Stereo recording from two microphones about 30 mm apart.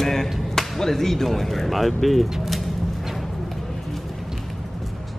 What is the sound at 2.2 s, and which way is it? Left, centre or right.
Speech, centre.